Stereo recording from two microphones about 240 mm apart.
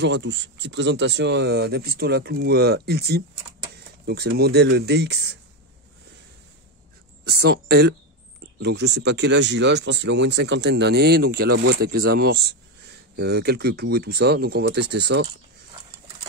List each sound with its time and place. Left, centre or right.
0.0 s speech: right
7.2 s speech: right